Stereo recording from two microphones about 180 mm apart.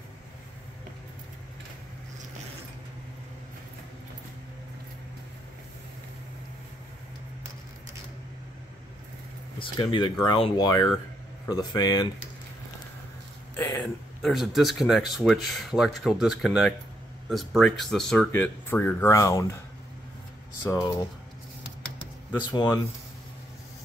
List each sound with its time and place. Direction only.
9.6 s speech: 25° left (ahead or behind)
13.6 s speech: 10° left (ahead or behind)
20.7 s speech: 20° left (ahead or behind)
22.5 s speech: 25° left (ahead or behind)